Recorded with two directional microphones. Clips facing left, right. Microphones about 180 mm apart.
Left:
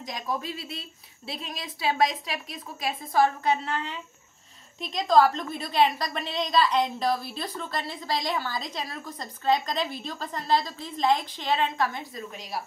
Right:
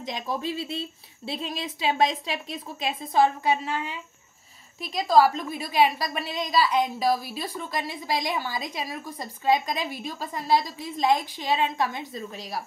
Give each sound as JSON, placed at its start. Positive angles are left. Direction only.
{"t": 0.0, "sound": "a woman's voice", "side_deg": -25}
{"t": 12.1, "sound": "a woman's voice", "side_deg": -35}